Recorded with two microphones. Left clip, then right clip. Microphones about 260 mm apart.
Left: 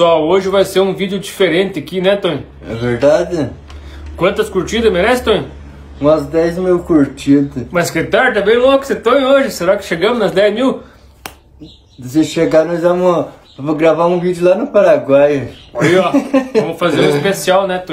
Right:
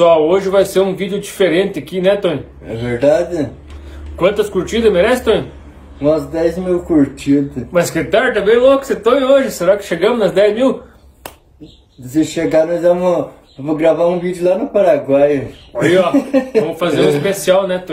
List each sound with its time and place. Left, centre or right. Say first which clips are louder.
0.0 s speech: even; centre
2.8 s speech: left 1 dB; centre
4.2 s speech: even; centre
5.9 s speech: left 3 dB; centre
7.7 s speech: even; centre
12.1 s speech: left 3 dB; centre
15.7 s speech: even; centre